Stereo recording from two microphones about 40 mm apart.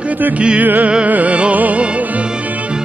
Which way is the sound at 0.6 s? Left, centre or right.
Right.